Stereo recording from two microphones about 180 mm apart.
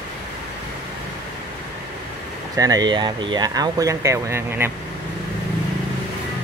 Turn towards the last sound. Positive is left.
turn(degrees=-15)  # may be behind; listen again after turning